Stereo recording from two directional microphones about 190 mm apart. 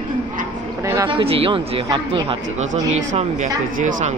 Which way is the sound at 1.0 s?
30° right (ahead or behind).